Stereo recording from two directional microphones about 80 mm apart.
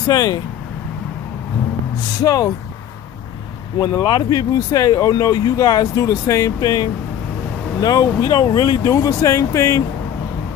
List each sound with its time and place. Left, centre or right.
0.1 s speech: left
2.2 s speech: left
3.8 s speech: left